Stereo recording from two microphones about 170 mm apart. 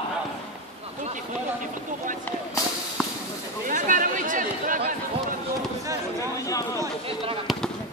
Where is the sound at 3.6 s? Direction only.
50° right (ahead or behind).